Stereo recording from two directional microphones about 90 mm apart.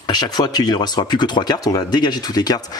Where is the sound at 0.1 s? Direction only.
50° left (ahead or behind).